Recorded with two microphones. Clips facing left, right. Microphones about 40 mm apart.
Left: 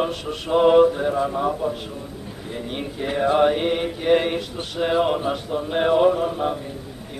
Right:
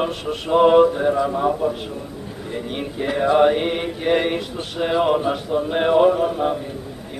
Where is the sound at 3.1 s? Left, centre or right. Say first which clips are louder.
Right 2 dB; centre.